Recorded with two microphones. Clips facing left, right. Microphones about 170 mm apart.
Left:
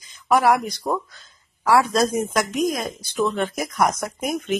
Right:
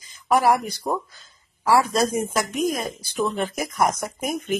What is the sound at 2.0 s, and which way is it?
Speech, 10° right (ahead or behind).